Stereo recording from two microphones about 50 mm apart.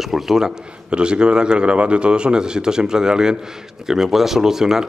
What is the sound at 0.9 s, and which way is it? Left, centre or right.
Speech, centre.